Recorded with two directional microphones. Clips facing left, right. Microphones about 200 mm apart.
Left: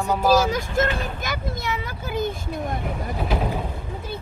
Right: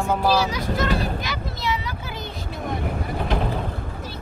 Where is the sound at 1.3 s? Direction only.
50° left (ahead or behind).